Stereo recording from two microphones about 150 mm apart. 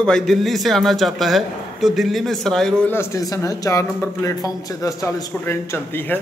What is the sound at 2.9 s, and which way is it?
A man's voice, 20° left (ahead or behind).